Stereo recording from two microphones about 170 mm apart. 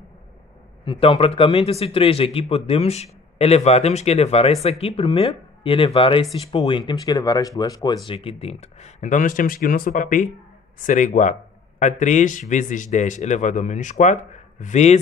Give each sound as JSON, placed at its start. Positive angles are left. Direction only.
{"t": 0.8, "sound": "a man's voice", "side_deg": 30}